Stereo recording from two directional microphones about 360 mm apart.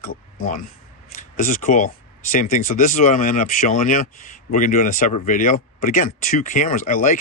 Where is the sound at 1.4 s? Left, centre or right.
Left.